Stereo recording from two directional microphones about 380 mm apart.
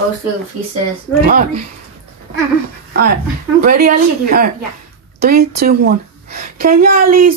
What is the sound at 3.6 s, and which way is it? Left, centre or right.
A woman's voice, right.